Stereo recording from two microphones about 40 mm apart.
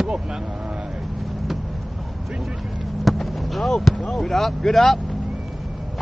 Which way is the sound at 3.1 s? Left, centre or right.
Centre.